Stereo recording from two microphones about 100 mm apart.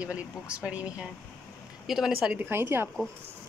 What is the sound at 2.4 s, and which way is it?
Speech, 25° right (ahead or behind).